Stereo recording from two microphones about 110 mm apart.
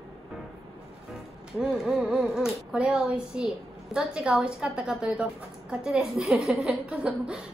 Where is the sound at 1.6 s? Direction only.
5° right (ahead or behind).